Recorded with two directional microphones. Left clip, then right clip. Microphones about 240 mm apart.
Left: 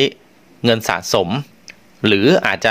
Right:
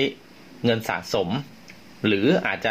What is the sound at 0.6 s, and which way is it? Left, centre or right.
Speech, left.